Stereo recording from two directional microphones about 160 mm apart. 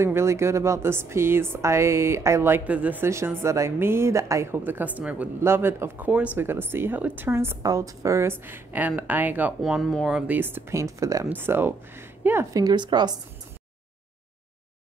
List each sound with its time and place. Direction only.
0.0 s speech: 15° right (ahead or behind)
9.6 s a woman's voice: centre (ahead or behind); by 13.2 s 25° right (ahead or behind)